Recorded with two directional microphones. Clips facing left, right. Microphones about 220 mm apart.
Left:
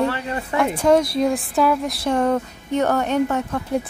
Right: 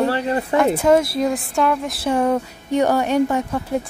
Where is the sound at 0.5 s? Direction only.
5° right (ahead or behind).